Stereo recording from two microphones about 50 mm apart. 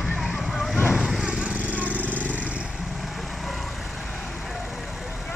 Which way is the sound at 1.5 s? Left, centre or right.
Right.